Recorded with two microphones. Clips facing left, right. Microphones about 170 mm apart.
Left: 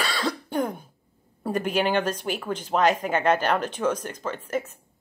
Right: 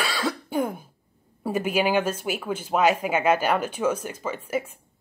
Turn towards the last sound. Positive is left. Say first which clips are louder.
# right 1 dB
turn(degrees=-10)  # may be behind; listen again after turning